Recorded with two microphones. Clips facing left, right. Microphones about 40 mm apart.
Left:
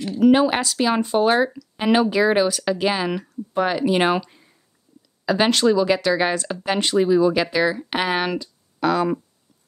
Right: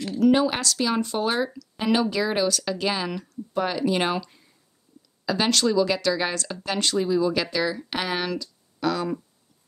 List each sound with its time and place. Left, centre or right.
0.2 s speech: left